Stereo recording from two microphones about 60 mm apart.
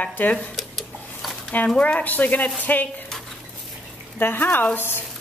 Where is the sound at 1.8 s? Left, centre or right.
Left.